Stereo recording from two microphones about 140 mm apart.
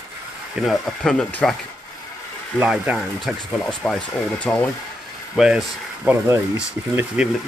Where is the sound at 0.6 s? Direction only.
Centre (ahead or behind).